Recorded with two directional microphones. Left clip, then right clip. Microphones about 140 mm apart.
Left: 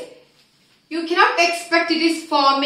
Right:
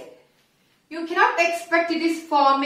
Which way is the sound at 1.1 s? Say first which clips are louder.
Left 3 dB; 15° right (ahead or behind).